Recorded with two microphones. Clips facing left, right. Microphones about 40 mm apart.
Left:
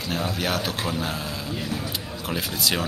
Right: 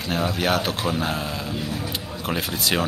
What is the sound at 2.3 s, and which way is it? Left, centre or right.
Speech, centre.